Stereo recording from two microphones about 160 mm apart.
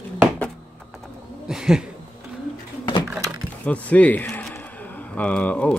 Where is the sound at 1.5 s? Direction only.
5° right (ahead or behind).